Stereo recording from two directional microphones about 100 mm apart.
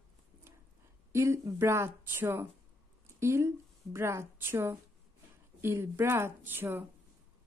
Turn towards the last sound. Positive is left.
turn(degrees=-20)  # may be behind; listen again after turning